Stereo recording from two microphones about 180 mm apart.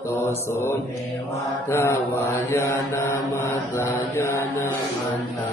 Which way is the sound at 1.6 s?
15° left (ahead or behind).